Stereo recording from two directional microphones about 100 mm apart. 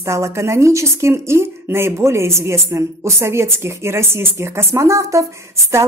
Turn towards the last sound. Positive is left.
turn(degrees=-30)  # may be behind; listen again after turning